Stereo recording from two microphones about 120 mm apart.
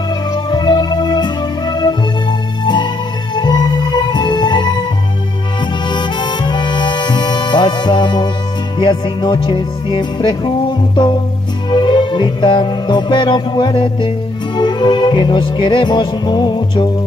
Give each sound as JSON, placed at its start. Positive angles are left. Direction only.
{"t": 0.3, "sound": "music", "side_deg": 40}
{"t": 5.9, "sound": "music", "side_deg": 40}